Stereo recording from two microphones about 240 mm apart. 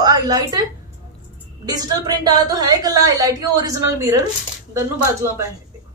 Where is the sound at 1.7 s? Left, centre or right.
Centre.